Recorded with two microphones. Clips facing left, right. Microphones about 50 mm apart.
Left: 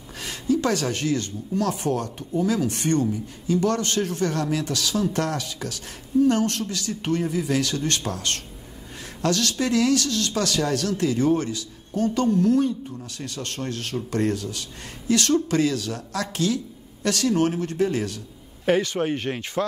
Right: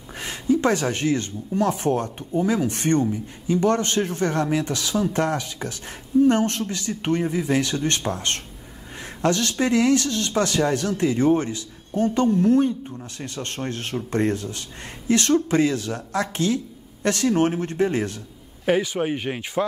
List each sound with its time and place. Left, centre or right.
0.2 s speech: right
18.7 s speech: centre